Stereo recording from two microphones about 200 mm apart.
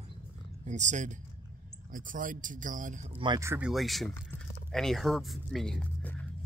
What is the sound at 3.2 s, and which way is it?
Speech, 15° right (ahead or behind).